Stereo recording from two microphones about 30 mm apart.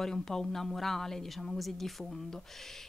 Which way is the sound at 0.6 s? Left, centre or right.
Centre.